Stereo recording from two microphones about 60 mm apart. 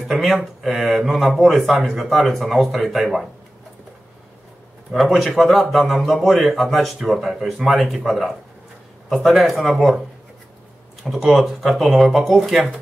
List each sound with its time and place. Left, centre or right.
0.1 s a man's voice: centre
4.9 s a man's voice: centre
11.1 s a man's voice: centre